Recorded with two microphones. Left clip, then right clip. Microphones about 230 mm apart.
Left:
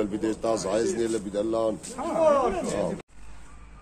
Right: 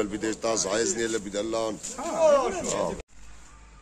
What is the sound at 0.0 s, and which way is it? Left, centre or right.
Speech, right.